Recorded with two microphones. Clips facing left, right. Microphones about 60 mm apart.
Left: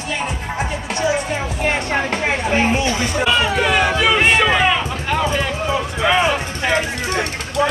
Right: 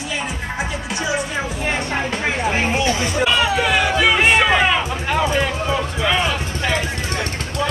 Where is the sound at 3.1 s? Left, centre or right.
Centre.